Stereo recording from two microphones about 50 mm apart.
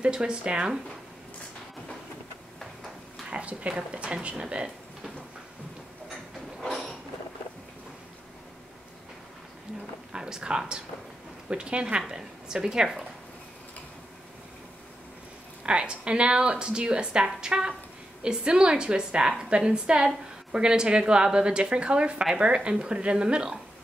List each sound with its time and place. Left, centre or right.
0.0 s speech: centre
3.3 s speech: right
6.6 s a sound: centre
10.1 s a woman's voice: centre
15.6 s a woman's voice: centre